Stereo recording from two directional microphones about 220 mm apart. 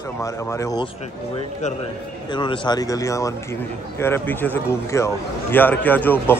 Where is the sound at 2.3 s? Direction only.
20° left (ahead or behind).